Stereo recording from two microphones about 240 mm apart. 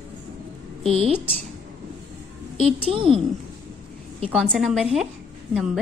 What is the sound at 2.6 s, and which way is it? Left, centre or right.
Speech, right.